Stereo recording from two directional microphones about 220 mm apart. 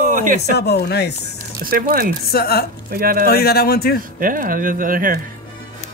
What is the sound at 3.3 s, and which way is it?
Speech, 45° left (ahead or behind).